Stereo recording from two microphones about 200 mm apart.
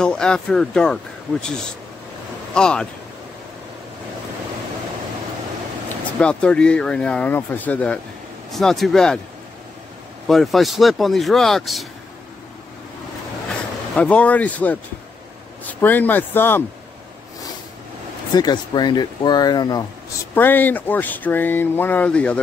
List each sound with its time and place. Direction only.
0.0 s speech: 5° left (ahead or behind)
2.5 s speech: 5° left (ahead or behind)
6.1 s speech: 5° left (ahead or behind)
10.2 s speech: centre (ahead or behind)
13.9 s speech: 5° left (ahead or behind)
18.3 s speech: 20° left (ahead or behind)